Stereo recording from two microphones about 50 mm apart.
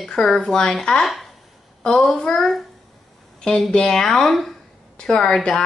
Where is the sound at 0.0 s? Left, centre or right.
Centre.